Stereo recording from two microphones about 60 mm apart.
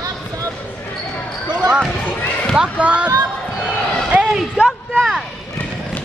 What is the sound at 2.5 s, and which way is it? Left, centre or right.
Speech, centre.